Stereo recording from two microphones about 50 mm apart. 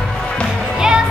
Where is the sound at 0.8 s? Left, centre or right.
Centre.